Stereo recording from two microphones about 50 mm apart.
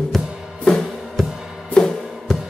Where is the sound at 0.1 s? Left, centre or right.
Centre.